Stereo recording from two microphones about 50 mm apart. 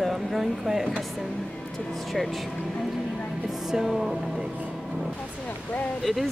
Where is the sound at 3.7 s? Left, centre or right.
Centre.